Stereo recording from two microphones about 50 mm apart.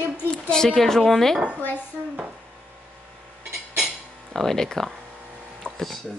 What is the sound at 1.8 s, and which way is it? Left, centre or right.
Dishes, right.